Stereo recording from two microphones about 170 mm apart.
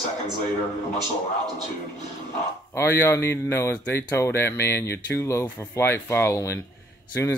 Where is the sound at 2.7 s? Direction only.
15° left (ahead or behind).